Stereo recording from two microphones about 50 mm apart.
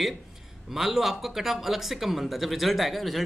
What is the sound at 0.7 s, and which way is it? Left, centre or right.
Speech, centre.